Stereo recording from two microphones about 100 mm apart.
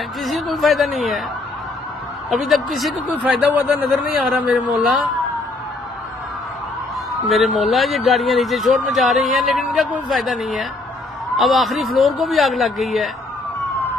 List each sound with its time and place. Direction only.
0.2 s speech: centre (ahead or behind)
2.2 s speech: centre (ahead or behind)
3.2 s a man's voice: 15° right (ahead or behind)
4.2 s speech: centre (ahead or behind)
7.2 s speech: centre (ahead or behind)